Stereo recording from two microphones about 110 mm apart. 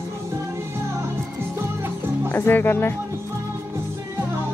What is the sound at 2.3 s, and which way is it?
Speech, 20° left (ahead or behind).